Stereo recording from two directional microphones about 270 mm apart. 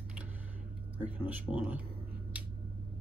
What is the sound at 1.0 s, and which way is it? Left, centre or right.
Speech, centre.